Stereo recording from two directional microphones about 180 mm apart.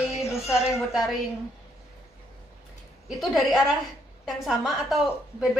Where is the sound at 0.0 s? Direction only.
35° left (ahead or behind).